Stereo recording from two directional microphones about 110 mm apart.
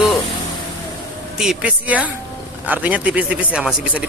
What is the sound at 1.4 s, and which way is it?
A man's voice, 5° right (ahead or behind).